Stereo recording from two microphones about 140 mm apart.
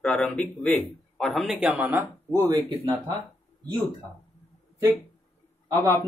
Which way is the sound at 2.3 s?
20° right (ahead or behind).